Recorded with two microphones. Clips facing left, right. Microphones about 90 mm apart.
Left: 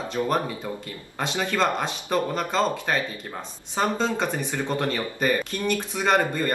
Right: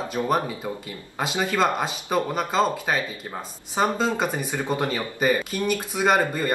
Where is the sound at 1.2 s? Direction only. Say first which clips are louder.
Right 1 dB; 10° right (ahead or behind).